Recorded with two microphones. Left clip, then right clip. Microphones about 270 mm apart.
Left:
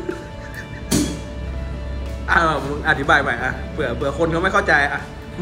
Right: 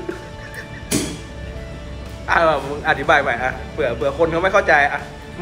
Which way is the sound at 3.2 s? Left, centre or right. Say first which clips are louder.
Right 1 dB; centre.